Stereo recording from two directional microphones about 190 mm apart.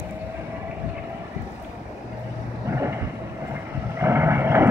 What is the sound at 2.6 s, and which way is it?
Vehicle, 15° right (ahead or behind).